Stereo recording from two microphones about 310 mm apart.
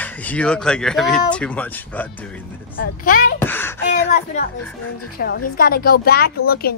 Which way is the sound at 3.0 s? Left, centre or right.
Left.